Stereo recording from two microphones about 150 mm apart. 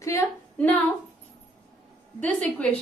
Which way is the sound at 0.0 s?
15° left (ahead or behind).